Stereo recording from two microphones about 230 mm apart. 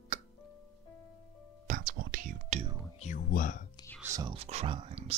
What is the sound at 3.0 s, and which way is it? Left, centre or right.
Speech, left.